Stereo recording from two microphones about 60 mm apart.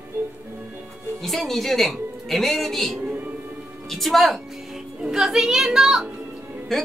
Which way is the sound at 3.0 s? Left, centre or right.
Right.